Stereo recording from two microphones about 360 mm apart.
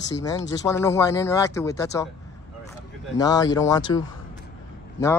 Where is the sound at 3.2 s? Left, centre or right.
Centre.